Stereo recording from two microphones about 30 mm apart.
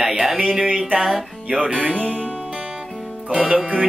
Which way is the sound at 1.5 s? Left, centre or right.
Right.